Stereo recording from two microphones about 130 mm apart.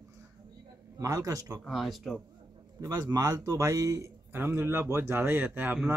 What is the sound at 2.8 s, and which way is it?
A man's voice, 30° right (ahead or behind).